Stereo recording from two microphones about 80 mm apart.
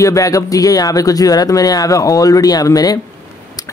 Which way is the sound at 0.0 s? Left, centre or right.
Left.